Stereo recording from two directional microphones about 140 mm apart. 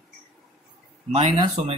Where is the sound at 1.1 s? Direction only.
55° right (ahead or behind).